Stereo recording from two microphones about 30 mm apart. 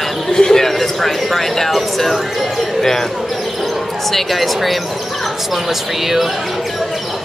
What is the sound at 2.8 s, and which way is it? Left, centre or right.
Speech, centre.